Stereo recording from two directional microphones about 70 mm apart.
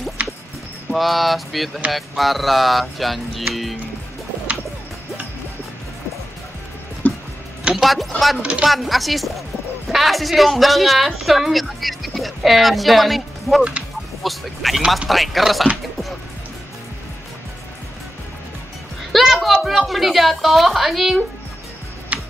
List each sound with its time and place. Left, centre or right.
0.2 s music: centre
0.9 s a woman's voice: centre
7.7 s a woman's voice: centre
8.4 s speech: centre
8.6 s a woman's voice: centre
13.6 s speech: centre
14.2 s a woman's voice: centre
19.1 s a woman's voice: centre
22.1 s tick-tock: centre